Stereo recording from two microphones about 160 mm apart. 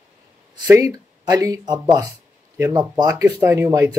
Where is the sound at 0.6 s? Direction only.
20° right (ahead or behind).